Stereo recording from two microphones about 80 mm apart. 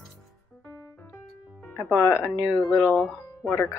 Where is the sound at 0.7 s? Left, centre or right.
Left.